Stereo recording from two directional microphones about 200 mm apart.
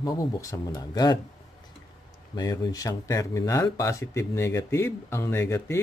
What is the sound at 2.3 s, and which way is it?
Speech, 20° left (ahead or behind).